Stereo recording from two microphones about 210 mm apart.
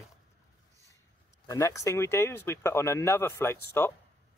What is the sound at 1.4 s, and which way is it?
Speech, 15° left (ahead or behind).